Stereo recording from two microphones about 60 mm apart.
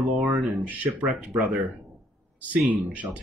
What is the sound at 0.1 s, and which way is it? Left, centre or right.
Speech, right.